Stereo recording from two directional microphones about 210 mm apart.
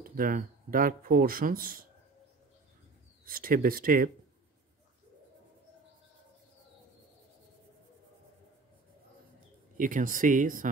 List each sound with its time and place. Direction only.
0.0 s speech: 40° right (ahead or behind)
3.3 s speech: 45° right (ahead or behind)
9.8 s speech: 40° right (ahead or behind)